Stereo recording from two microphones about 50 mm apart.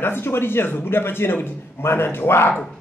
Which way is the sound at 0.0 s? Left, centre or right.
Left.